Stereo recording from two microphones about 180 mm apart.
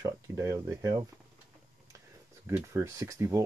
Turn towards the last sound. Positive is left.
turn(degrees=-15)  # may be behind; listen again after turning